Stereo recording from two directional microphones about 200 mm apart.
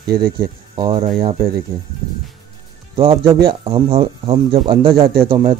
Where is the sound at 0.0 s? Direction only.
50° right (ahead or behind).